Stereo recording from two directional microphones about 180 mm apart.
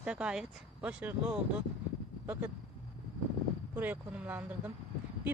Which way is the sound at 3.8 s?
10° right (ahead or behind).